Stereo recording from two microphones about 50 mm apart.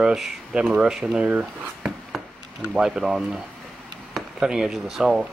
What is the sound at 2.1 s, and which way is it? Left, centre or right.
Chop, centre.